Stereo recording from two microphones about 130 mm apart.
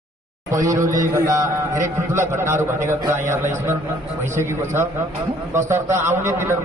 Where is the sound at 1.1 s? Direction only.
30° right (ahead or behind).